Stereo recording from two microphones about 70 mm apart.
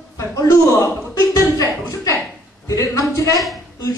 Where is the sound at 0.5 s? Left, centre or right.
Left.